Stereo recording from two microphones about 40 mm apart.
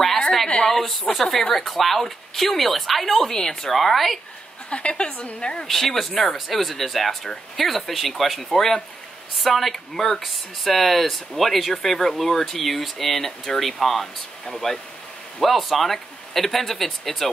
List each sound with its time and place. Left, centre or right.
0.7 s a woman's voice: centre
1.7 s speech: centre
3.3 s a woman's voice: centre
3.7 s speech: centre
4.6 s a woman's voice: left
5.7 s speech: centre